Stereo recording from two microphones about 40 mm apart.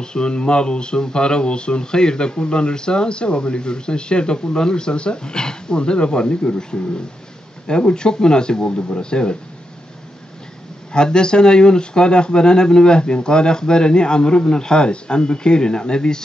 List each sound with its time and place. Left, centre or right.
0.0 s speech: left
10.9 s speech: left